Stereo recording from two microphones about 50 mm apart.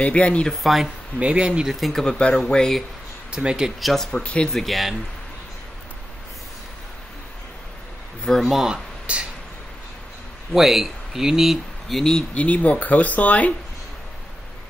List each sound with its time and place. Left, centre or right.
0.0 s speech: left
0.5 s speech: centre
1.2 s speech: right
1.7 s speech: centre
2.0 s speech: left
3.3 s speech: centre
3.8 s speech: centre
4.2 s speech: centre
4.5 s speech: centre
8.3 s speech: centre
9.1 s speech: right
10.5 s speech: centre
12.0 s speech: centre
12.4 s speech: left